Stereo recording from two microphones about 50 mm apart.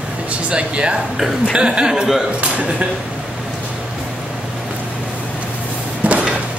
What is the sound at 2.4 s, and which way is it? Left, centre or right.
Speech, right.